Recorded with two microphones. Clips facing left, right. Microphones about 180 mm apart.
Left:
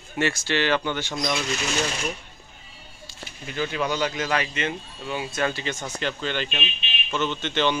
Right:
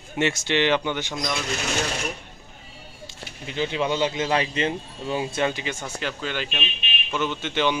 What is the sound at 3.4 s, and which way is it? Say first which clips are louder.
Speech: right 2 dB; 20° right (ahead or behind).